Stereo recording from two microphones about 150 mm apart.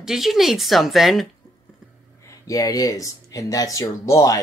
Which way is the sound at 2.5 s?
25° left (ahead or behind).